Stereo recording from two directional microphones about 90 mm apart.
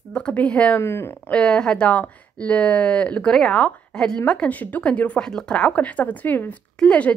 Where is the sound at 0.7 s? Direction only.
25° left (ahead or behind).